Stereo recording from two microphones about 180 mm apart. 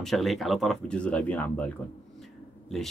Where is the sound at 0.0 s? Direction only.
Centre (ahead or behind).